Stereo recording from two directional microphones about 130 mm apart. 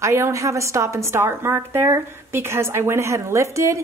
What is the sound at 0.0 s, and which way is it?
Speech, 20° right (ahead or behind).